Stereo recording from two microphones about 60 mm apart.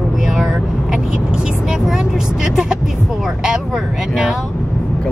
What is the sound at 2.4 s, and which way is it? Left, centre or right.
Music, centre.